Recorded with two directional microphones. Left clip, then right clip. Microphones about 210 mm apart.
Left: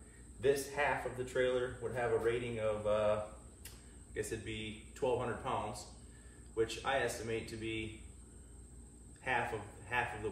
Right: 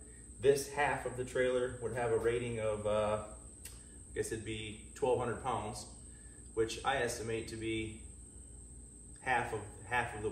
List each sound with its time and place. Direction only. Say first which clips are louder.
0.4 s a man's voice: right 3 dB; centre (ahead or behind)
9.2 s speech: right 2 dB; centre (ahead or behind)